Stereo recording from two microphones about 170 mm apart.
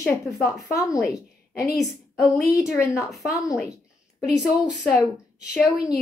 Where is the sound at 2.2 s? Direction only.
20° left (ahead or behind).